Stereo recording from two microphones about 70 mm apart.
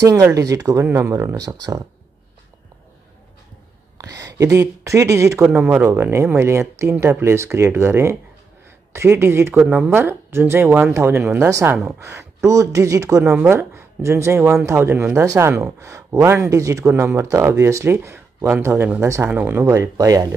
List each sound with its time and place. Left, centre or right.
0.0 s speech: right
4.0 s speech: right
5.5 s speech: right
9.5 s speech: centre
9.8 s speech: right
13.4 s speech: right
16.4 s speech: right
16.9 s speech: right
18.7 s speech: right
19.6 s speech: right